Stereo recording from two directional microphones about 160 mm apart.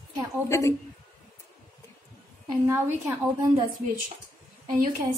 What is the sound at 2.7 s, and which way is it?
Speech, 20° right (ahead or behind).